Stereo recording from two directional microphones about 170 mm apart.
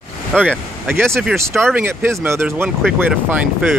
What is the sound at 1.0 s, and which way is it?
Speech, 15° right (ahead or behind).